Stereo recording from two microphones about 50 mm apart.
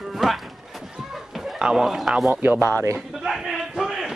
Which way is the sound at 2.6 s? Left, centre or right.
Right.